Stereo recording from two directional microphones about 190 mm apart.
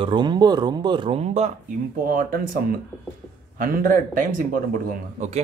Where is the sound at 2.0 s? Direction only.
45° right (ahead or behind).